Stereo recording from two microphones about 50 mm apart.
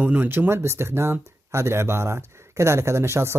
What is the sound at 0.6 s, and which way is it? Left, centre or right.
Speech, right.